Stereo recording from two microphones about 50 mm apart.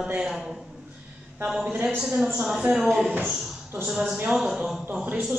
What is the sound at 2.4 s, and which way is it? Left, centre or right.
Speech, centre.